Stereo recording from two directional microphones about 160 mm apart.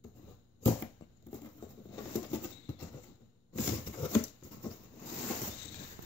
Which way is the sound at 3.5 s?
15° left (ahead or behind).